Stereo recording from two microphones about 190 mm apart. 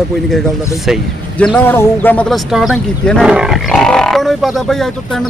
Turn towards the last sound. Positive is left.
turn(degrees=0)  # may be behind; listen again after turning